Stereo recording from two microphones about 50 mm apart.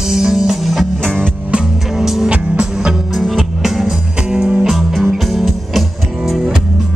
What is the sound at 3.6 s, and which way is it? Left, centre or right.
Music, centre.